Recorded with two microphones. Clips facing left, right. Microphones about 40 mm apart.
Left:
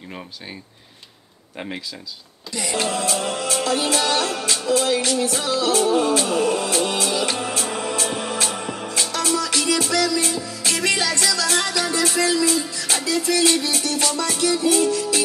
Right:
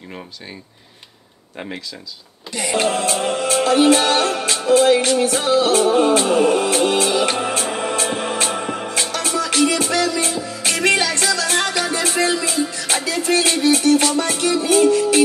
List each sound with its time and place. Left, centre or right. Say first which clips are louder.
2.5 s music: right 4 dB; right